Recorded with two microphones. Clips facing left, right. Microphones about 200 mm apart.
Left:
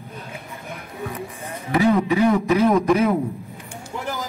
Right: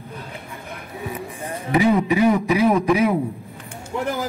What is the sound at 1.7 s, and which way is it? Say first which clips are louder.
A man's voice: even; 15° right (ahead or behind).